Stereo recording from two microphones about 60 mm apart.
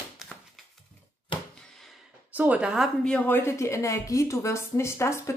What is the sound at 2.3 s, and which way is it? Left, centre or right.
Speech, right.